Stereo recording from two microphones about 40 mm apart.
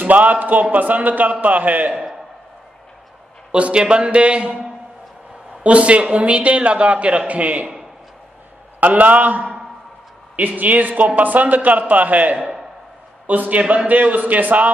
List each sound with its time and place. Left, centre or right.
0.0 s a man's voice: right
3.5 s a man's voice: right
8.7 s a man's voice: right